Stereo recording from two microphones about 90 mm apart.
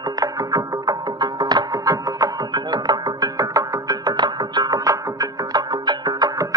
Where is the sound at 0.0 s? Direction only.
45° right (ahead or behind).